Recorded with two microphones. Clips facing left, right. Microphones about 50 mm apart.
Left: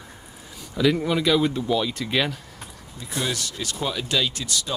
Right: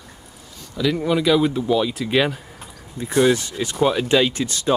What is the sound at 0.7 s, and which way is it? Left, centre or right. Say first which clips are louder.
Speech: right 1 dB; centre.